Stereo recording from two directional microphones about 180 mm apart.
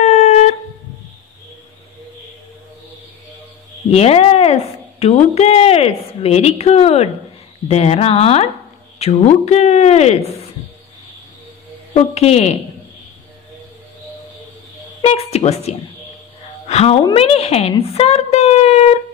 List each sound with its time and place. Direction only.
0.0 s shofar: 35° left (ahead or behind)
3.9 s speech: 35° left (ahead or behind)
11.9 s speech: 35° left (ahead or behind)
15.0 s speech: 35° left (ahead or behind)
16.6 s music: 35° left (ahead or behind)
17.0 s a woman's voice: 30° left (ahead or behind)